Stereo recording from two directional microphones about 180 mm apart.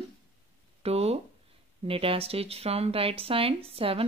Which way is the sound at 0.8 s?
35° right (ahead or behind).